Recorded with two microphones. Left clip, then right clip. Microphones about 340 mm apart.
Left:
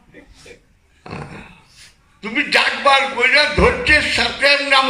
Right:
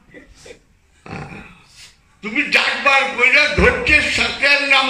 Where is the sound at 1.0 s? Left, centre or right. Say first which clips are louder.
Even; left.